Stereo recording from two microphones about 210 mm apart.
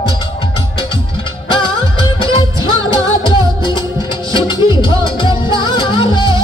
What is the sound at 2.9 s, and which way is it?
Music, 25° left (ahead or behind).